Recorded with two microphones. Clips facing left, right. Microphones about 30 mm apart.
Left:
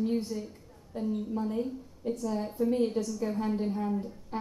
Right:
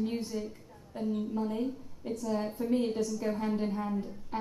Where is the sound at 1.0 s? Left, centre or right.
Centre.